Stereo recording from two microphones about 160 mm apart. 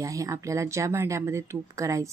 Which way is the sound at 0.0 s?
20° right (ahead or behind).